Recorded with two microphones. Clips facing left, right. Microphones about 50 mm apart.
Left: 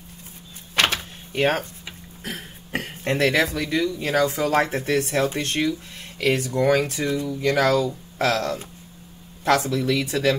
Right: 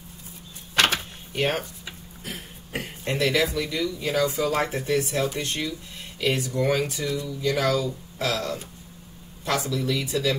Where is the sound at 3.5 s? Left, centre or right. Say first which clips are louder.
Left 4 dB; left.